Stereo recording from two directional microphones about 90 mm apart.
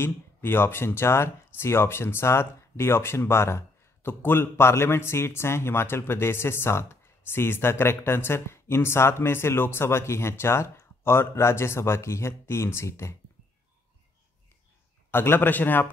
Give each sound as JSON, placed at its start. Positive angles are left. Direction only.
{"t": 0.0, "sound": "speech", "side_deg": 25}
{"t": 15.0, "sound": "speech", "side_deg": 25}